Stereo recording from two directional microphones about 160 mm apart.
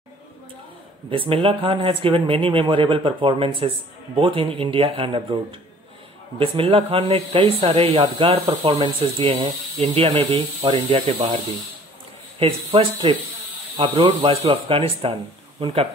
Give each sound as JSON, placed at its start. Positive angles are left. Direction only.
{"t": 1.1, "sound": "speech", "side_deg": -35}